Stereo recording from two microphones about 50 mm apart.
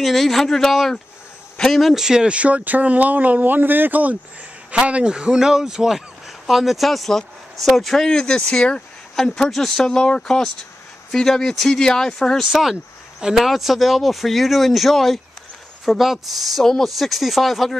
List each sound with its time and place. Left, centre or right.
0.0 s speech: centre
2.0 s speech: centre
8.1 s speech: centre
9.1 s speech: centre
12.4 s speech: centre
13.5 s speech: centre